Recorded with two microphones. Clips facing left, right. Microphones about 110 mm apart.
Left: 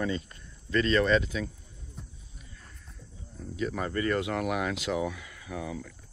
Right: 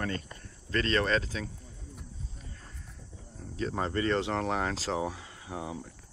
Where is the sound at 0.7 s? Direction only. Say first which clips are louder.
Left 4 dB; 35° right (ahead or behind).